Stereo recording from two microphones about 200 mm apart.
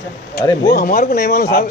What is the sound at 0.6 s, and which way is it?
Speech, 50° left (ahead or behind).